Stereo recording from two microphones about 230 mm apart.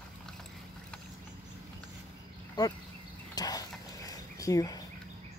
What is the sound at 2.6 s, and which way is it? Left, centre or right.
Speech, centre.